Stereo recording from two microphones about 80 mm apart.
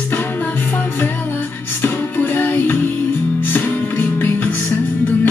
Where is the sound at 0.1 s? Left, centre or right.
Left.